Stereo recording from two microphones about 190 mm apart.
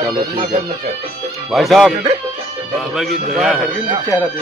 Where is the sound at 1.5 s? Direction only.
Centre (ahead or behind).